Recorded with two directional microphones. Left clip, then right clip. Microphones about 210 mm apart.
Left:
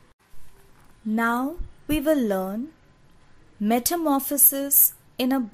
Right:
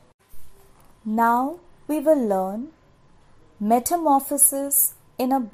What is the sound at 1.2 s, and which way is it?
A woman's voice, 25° left (ahead or behind).